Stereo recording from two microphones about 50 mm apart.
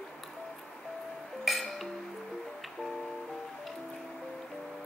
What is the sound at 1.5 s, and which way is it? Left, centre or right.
Music, centre.